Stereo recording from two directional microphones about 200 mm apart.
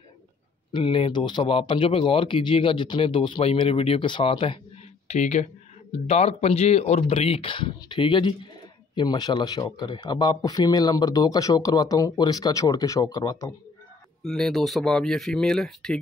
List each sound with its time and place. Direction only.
0.7 s speech: 25° left (ahead or behind)
14.2 s speech: centre (ahead or behind)